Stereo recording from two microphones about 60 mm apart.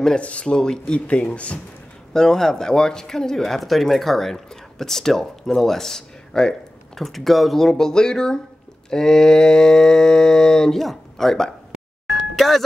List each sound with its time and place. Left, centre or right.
0.2 s speech: centre
2.1 s speech: centre
12.1 s music: centre